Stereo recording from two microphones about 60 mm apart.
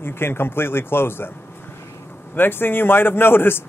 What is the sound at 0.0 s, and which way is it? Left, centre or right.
Speech, left.